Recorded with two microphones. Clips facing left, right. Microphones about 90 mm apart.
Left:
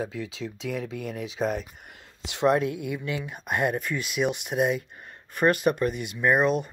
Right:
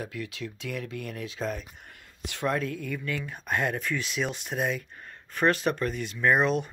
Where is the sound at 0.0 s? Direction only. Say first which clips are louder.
Left 4 dB; 20° left (ahead or behind).